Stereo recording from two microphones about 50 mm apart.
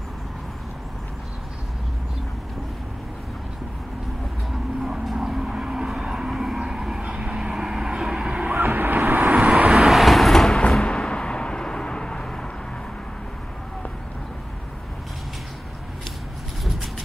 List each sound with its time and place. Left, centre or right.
5.0 s vehicle: centre
7.0 s vehicle: right
7.3 s vehicle: centre
8.5 s vehicle: right
9.8 s vehicle: centre
10.8 s a sound: centre